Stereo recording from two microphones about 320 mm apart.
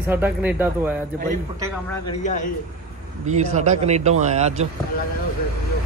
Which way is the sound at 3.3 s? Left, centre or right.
Right.